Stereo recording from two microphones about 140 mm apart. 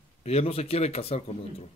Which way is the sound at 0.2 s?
45° left (ahead or behind).